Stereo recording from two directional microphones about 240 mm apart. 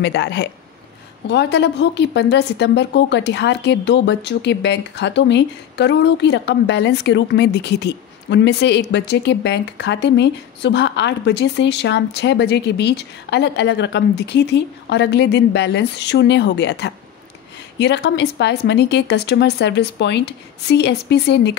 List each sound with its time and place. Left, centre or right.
0.0 s a woman's voice: left